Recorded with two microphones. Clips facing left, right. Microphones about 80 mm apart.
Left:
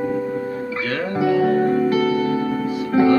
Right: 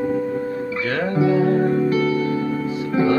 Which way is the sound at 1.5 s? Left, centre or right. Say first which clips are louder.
Left 1 dB; left.